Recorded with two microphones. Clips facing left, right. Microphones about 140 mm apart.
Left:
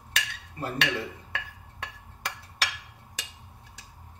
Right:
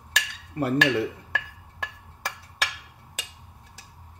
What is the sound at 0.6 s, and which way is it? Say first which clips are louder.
Speech: right 8 dB; 65° right (ahead or behind).